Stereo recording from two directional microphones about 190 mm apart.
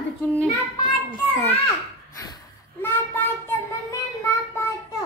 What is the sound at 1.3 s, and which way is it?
Children playing, 10° left (ahead or behind).